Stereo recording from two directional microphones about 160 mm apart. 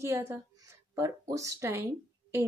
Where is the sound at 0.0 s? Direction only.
15° right (ahead or behind).